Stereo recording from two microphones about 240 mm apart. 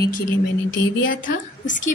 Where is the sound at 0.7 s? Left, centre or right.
Left.